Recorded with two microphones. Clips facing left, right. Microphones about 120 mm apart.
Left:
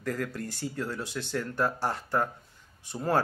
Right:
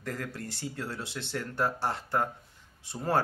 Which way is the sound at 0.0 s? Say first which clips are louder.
Left 4 dB; 30° right (ahead or behind).